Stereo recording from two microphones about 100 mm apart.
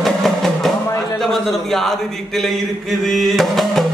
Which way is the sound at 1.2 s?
Centre (ahead or behind).